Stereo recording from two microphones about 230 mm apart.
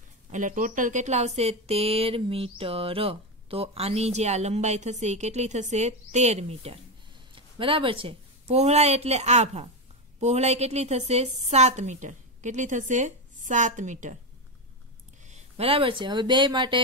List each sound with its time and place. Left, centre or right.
0.3 s a woman's voice: right
15.2 s speech: right